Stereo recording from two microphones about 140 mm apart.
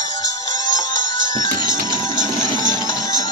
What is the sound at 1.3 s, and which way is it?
Music, 70° right (ahead or behind).